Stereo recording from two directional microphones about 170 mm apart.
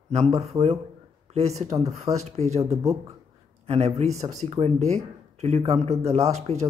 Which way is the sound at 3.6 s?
40° right (ahead or behind).